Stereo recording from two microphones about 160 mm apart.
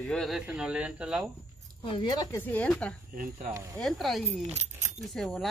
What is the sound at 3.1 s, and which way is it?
Speech, 60° right (ahead or behind).